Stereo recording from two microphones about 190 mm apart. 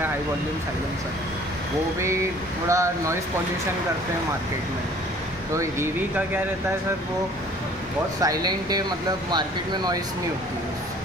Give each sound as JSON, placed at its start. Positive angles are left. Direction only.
{"t": 2.7, "sound": "speech", "side_deg": -15}
{"t": 5.6, "sound": "speech", "side_deg": -15}
{"t": 8.2, "sound": "speech", "side_deg": -20}